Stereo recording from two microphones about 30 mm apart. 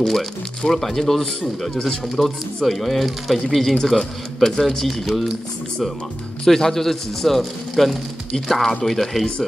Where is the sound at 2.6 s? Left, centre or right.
Centre.